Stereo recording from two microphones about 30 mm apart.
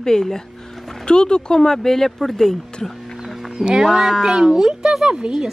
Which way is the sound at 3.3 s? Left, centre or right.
Centre.